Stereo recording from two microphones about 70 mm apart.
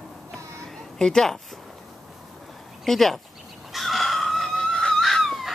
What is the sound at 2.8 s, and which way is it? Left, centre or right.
Speech, centre.